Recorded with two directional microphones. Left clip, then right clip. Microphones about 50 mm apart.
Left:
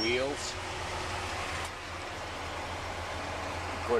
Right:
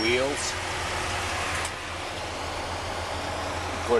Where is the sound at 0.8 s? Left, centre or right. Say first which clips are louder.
Right 5 dB; centre.